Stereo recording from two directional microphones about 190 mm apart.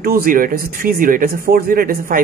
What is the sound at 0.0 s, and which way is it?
Speech, 50° right (ahead or behind).